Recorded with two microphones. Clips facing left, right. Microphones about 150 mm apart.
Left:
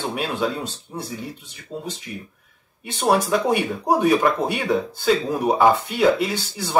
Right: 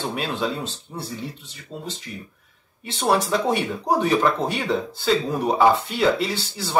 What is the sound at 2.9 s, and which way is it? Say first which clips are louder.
Speech: left 2 dB; 10° left (ahead or behind).